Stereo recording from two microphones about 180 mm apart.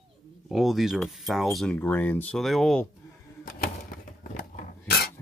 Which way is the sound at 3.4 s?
50° left (ahead or behind).